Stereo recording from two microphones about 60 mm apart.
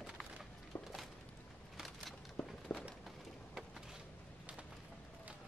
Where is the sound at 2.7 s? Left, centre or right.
Left.